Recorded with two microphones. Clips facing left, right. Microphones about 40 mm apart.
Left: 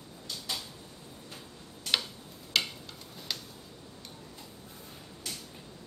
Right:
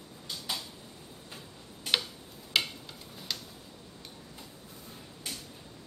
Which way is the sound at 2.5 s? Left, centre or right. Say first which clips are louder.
Right 1 dB; centre.